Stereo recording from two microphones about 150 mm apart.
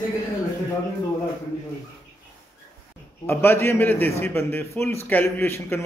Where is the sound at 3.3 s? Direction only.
15° left (ahead or behind).